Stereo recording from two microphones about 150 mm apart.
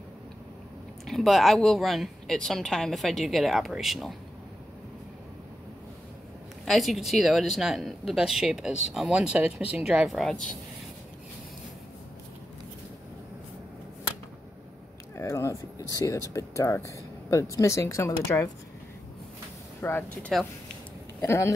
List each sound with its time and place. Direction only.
1.0 s speech: centre (ahead or behind)
6.6 s speech: centre (ahead or behind)
15.1 s speech: 20° left (ahead or behind)
19.8 s speech: 15° left (ahead or behind)